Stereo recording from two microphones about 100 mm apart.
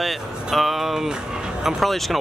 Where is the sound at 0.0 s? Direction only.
Centre (ahead or behind).